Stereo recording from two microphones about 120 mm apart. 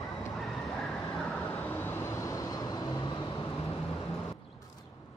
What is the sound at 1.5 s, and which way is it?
Vehicle, 15° left (ahead or behind).